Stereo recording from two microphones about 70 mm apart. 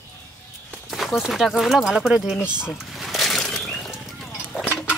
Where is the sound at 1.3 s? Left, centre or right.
Centre.